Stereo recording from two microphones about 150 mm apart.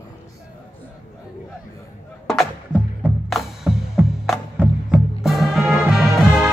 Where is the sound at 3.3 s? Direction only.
Centre (ahead or behind).